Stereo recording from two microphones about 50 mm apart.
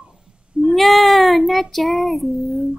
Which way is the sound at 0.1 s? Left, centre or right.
Centre.